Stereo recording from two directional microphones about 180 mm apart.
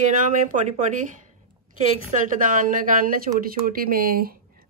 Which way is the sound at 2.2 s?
50° right (ahead or behind).